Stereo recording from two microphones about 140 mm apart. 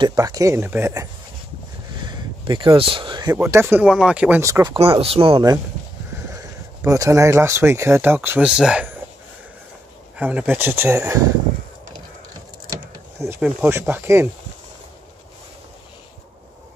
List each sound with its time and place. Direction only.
0.0 s speech: 25° right (ahead or behind)
2.0 s a sound: 30° right (ahead or behind)
3.3 s speech: 20° right (ahead or behind)
4.4 s speech: 20° right (ahead or behind)
4.7 s speech: 40° right (ahead or behind)
6.3 s speech: 20° right (ahead or behind)
8.5 s speech: 5° right (ahead or behind)
10.1 s speech: 10° right (ahead or behind)
13.4 s speech: 15° right (ahead or behind)